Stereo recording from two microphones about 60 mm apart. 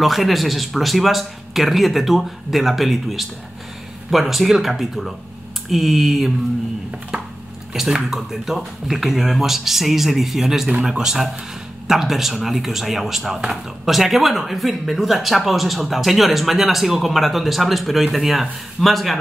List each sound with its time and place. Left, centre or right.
0.0 s speech: centre
7.7 s speech: centre